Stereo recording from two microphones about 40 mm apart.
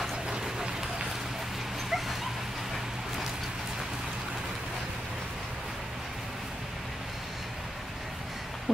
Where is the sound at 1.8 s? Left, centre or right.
Centre.